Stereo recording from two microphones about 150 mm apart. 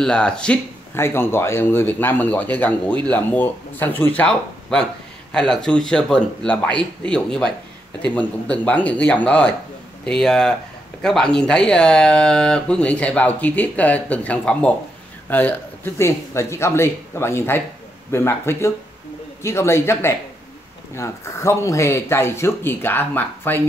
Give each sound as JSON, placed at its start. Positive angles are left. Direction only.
{"t": 0.0, "sound": "speech", "side_deg": 5}